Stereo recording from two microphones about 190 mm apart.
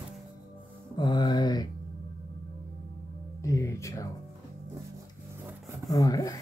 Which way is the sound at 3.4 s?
15° left (ahead or behind).